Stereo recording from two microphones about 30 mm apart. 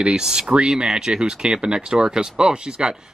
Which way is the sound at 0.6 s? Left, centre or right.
Centre.